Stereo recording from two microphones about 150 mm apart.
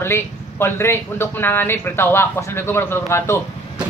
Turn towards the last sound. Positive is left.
turn(degrees=15)  # may be behind; listen again after turning